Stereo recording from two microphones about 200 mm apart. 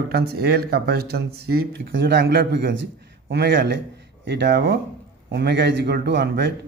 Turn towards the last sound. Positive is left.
turn(degrees=-55)  # may be behind; listen again after turning